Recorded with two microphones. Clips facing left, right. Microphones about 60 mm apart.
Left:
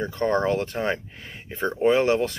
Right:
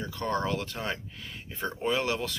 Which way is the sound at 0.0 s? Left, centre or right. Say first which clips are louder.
Left 7 dB; left.